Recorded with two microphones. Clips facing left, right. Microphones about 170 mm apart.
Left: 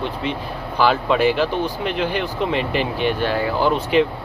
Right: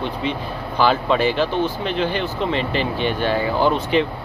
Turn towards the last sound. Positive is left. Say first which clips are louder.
# even
turn(degrees=5)  # may be behind; listen again after turning